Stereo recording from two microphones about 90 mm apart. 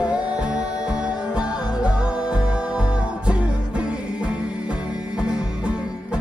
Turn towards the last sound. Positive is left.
turn(degrees=-10)  # may be behind; listen again after turning